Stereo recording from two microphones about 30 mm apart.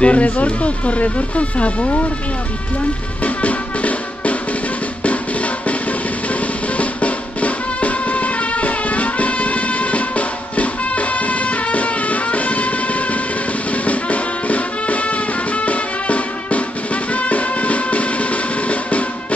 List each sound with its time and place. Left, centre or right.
0.0 s speech: left
3.3 s music: left
6.8 s music: left